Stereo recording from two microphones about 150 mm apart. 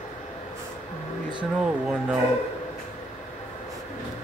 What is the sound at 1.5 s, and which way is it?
Speech, 5° right (ahead or behind).